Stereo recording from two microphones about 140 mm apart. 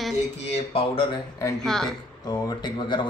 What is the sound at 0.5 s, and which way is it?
Speech, 40° left (ahead or behind).